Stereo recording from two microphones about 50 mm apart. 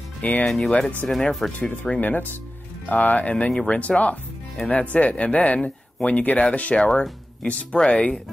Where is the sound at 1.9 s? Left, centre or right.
Left.